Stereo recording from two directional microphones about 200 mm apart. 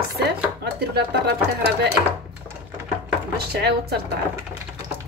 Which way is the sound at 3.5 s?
55° right (ahead or behind).